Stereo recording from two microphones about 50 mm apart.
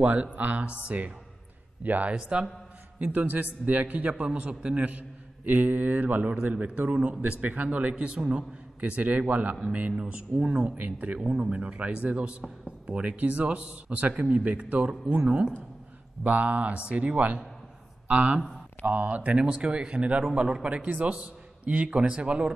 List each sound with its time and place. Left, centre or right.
0.0 s a man's voice: right
2.1 s a man's voice: centre
3.0 s a man's voice: right
6.3 s a man's voice: right
11.1 s a man's voice: centre